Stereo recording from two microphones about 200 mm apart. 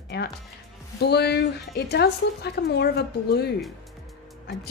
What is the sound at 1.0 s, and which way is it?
A woman's voice, 55° left (ahead or behind).